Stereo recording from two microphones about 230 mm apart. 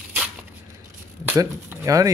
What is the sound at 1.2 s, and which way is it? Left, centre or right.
Speech, centre.